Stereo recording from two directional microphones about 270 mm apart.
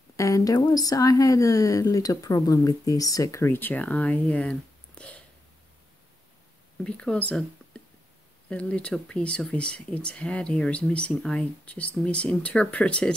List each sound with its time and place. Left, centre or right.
0.1 s speech: centre
6.8 s speech: centre